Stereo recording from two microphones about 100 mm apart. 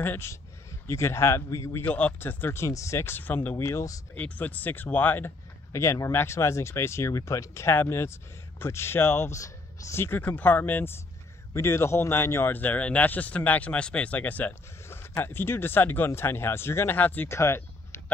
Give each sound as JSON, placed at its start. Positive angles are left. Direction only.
{"t": 0.0, "sound": "speech", "side_deg": 25}
{"t": 4.1, "sound": "speech", "side_deg": 15}